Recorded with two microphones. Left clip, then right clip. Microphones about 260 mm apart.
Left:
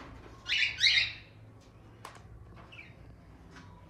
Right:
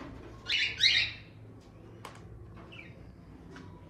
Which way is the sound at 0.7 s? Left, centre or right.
Left.